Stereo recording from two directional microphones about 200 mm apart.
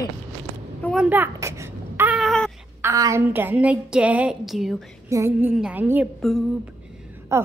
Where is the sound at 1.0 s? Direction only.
10° right (ahead or behind).